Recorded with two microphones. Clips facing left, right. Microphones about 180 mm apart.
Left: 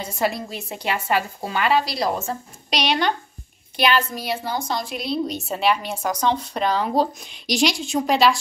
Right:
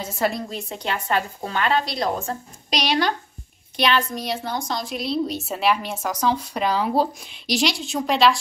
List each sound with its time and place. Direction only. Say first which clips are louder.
0.0 s a woman's voice: even; centre (ahead or behind)